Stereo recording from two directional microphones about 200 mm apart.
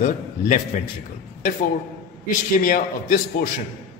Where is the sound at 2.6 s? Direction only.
45° left (ahead or behind).